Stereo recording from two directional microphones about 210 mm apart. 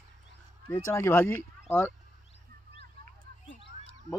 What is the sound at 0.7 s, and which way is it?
Speech, 10° left (ahead or behind).